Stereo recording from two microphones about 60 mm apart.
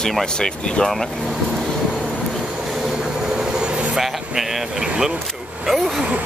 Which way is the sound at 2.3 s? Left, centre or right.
Centre.